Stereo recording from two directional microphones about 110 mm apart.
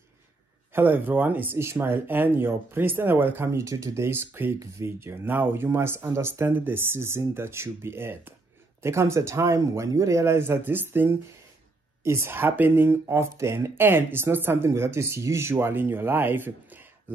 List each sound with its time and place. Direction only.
0.7 s speech: 15° right (ahead or behind)